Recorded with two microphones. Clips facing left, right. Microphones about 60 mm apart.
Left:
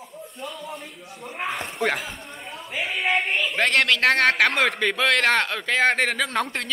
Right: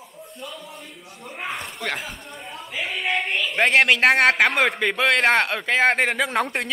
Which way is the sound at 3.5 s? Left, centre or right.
Centre.